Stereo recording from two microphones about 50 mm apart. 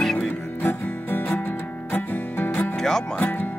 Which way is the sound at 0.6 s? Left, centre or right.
Left.